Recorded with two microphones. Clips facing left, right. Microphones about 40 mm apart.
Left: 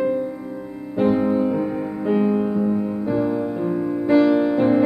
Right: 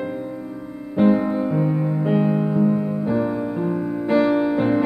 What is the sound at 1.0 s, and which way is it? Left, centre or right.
Music, centre.